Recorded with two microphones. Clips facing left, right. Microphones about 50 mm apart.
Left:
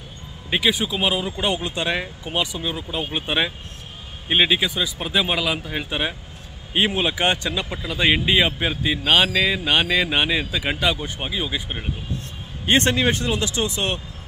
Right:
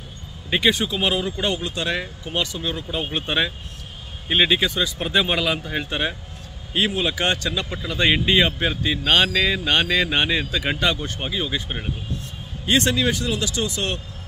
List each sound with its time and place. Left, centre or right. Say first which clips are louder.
0.5 s speech: right 1 dB; centre
6.7 s speech: left 1 dB; left; by 11.9 s centre
12.6 s speech: left 1 dB; left